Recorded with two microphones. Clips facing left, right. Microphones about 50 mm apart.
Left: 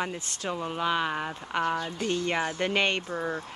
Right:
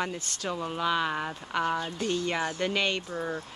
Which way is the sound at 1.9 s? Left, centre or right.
Left.